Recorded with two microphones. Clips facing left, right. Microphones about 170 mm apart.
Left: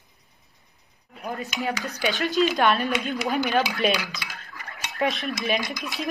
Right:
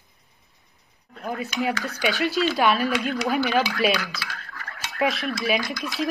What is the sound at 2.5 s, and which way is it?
Speech, 5° right (ahead or behind).